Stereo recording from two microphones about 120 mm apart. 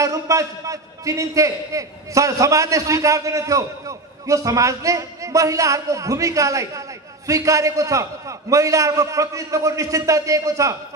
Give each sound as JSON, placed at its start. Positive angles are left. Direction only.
{"t": 0.0, "sound": "a man's voice", "side_deg": -30}